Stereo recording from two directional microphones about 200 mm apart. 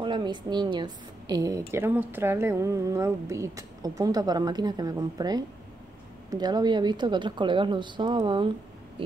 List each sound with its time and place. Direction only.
0.0 s a woman's voice: 25° right (ahead or behind)